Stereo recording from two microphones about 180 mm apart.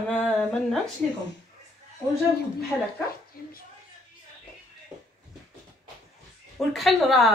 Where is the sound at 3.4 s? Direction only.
55° left (ahead or behind).